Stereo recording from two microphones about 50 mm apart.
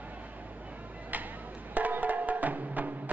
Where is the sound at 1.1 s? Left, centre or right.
Right.